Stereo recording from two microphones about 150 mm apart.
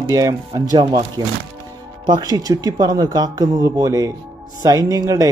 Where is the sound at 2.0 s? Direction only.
30° right (ahead or behind).